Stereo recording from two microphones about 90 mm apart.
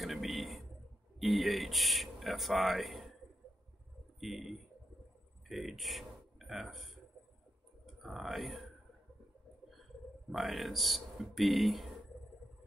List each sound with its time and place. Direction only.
0.0 s a sound: centre (ahead or behind)
1.2 s speech: centre (ahead or behind)
4.2 s speech: centre (ahead or behind)
8.0 s speech: centre (ahead or behind)
10.3 s speech: centre (ahead or behind)